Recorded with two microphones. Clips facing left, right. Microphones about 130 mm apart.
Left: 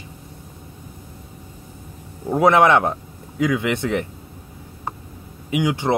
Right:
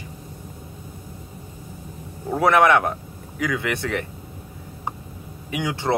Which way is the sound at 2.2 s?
20° left (ahead or behind).